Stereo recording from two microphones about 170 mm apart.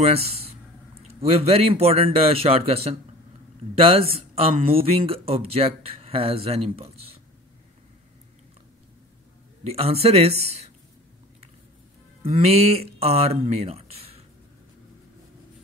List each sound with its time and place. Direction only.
0.0 s speech: 35° right (ahead or behind)
9.7 s speech: 35° right (ahead or behind)
12.2 s speech: 35° right (ahead or behind)